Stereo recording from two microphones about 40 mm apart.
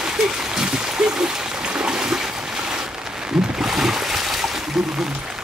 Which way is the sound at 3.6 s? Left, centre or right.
Centre.